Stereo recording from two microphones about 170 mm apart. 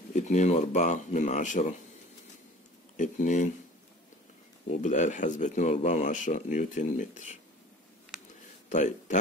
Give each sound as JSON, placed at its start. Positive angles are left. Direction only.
{"t": 0.1, "sound": "speech", "side_deg": 45}
{"t": 3.0, "sound": "speech", "side_deg": 45}
{"t": 4.6, "sound": "speech", "side_deg": 45}
{"t": 8.6, "sound": "speech", "side_deg": 45}